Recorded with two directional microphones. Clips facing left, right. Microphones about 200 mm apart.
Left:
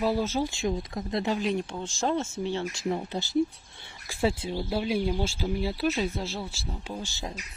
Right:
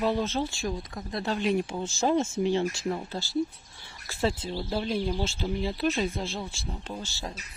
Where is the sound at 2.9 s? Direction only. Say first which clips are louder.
Left 2 dB; 20° left (ahead or behind).